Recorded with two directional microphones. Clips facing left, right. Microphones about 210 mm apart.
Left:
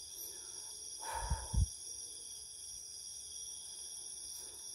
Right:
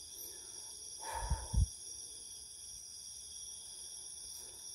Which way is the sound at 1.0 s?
10° right (ahead or behind).